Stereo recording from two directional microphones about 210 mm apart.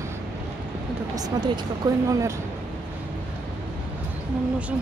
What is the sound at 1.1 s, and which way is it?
Speech, 20° right (ahead or behind).